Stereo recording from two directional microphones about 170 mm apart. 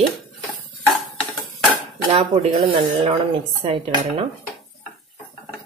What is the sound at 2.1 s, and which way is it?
Speech, 35° right (ahead or behind).